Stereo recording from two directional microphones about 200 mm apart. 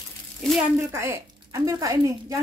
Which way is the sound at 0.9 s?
15° right (ahead or behind).